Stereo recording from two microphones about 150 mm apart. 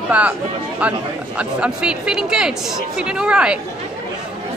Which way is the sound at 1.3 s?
5° right (ahead or behind).